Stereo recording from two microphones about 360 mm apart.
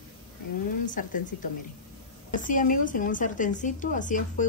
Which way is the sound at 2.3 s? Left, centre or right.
Left.